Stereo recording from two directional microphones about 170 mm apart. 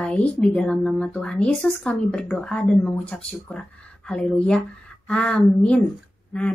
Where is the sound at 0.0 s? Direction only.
5° left (ahead or behind).